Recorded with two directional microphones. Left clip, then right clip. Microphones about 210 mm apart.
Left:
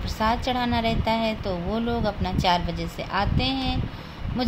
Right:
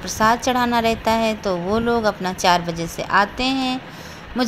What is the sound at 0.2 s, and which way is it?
A woman's voice, 20° right (ahead or behind).